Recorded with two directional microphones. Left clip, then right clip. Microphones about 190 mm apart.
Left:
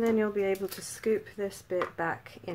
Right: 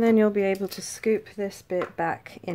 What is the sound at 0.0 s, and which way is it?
Speech, 40° right (ahead or behind).